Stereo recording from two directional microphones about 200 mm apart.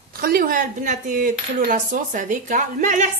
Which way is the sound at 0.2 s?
45° right (ahead or behind).